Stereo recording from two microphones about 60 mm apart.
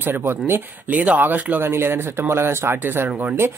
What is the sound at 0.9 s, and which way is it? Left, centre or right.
Speech, right.